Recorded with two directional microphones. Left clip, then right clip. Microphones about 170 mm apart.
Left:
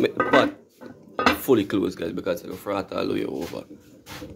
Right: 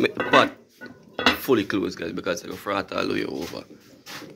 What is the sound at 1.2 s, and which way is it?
Speech, 15° left (ahead or behind).